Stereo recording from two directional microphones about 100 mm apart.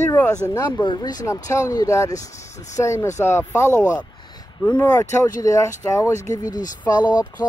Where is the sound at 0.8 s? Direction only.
45° left (ahead or behind).